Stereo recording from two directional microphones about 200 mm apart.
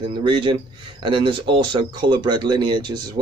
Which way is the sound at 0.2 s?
25° right (ahead or behind).